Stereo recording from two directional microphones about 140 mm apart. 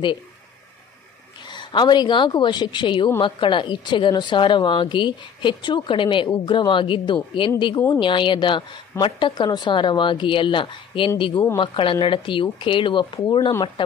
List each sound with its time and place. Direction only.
1.5 s a woman's voice: 35° left (ahead or behind)